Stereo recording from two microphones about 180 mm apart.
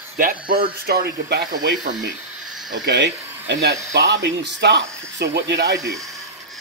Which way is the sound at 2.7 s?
70° right (ahead or behind).